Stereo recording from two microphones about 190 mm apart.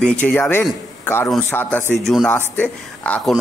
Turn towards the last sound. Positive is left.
turn(degrees=5)  # may be behind; listen again after turning